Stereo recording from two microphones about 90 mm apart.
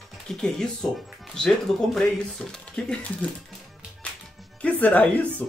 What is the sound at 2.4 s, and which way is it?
Speech, 10° left (ahead or behind).